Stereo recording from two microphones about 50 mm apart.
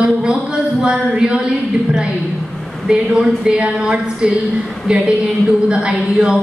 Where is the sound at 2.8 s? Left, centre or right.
Centre.